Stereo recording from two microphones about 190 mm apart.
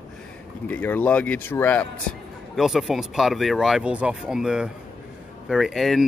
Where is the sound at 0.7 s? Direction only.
10° left (ahead or behind).